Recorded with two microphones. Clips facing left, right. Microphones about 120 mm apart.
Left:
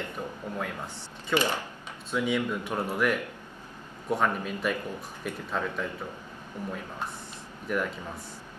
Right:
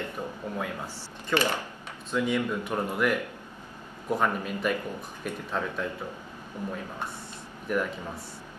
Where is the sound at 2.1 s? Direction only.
5° left (ahead or behind).